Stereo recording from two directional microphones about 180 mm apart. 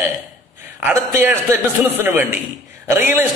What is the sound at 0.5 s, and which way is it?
A man's voice, 10° right (ahead or behind).